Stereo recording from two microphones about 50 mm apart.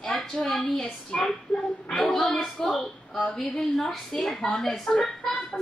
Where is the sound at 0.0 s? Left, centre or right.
Centre.